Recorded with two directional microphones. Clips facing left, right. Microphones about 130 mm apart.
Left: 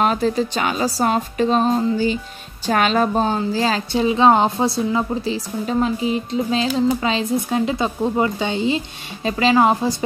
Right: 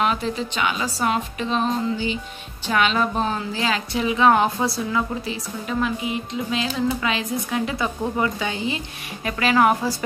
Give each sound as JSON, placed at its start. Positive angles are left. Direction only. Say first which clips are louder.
{"t": 0.0, "sound": "a woman's voice", "louder": "left 5 dB", "side_deg": 40}